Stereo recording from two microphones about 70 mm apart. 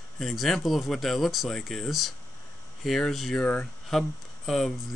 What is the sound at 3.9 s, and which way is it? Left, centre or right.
Speech, centre.